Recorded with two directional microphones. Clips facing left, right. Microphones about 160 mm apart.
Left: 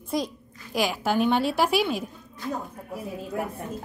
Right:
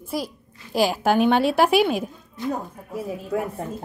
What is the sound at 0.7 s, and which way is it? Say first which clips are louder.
Speech: right 5 dB; 35° right (ahead or behind).